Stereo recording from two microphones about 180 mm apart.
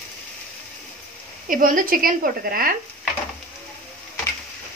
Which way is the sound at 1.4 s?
50° right (ahead or behind).